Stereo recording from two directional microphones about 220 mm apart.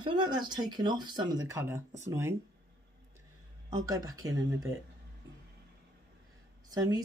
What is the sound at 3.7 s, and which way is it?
Speech, 15° right (ahead or behind).